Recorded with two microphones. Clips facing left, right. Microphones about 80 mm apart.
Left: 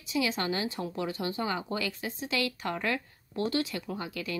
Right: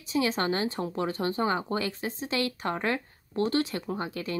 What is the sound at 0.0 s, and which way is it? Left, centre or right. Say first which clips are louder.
Speech: right 3 dB; right.